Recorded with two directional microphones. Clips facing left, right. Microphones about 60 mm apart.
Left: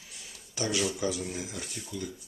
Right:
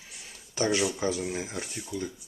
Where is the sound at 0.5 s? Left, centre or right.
Right.